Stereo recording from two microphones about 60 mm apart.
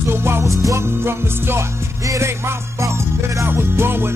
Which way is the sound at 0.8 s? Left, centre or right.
Right.